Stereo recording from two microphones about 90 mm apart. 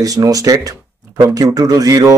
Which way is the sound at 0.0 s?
40° right (ahead or behind).